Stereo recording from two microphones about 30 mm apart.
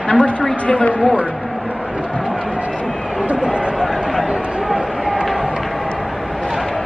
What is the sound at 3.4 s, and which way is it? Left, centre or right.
Run, right.